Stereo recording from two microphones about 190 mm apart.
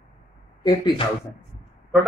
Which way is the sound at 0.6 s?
20° left (ahead or behind).